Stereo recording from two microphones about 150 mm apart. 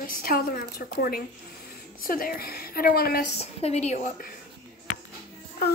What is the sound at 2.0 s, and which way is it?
A woman's voice, 75° left (ahead or behind).